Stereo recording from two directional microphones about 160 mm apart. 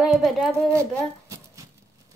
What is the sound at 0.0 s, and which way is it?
Speech, centre (ahead or behind).